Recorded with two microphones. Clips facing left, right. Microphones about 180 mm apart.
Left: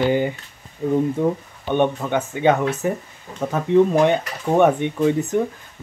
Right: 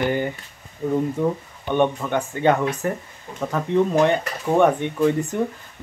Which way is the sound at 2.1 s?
5° left (ahead or behind).